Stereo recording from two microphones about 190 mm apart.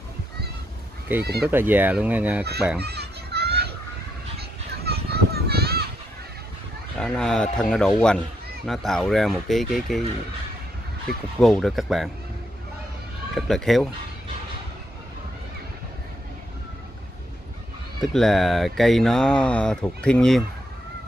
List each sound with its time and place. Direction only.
1.2 s speech: 60° right (ahead or behind)
1.5 s speech: 10° right (ahead or behind)
2.8 s children playing: 60° right (ahead or behind)
7.0 s speech: 5° left (ahead or behind)
11.3 s speech: centre (ahead or behind)
13.3 s speech: centre (ahead or behind)
18.0 s speech: centre (ahead or behind)